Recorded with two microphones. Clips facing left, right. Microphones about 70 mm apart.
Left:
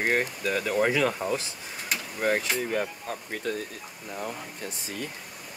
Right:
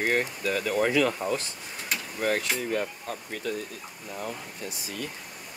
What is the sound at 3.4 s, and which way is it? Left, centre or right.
Speech, left.